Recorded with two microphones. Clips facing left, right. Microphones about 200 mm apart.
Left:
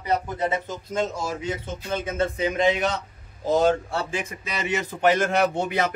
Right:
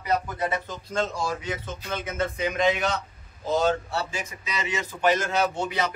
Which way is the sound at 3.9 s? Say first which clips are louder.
Left 3 dB; 50° left (ahead or behind).